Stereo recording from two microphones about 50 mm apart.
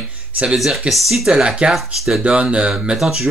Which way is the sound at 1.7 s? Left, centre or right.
Centre.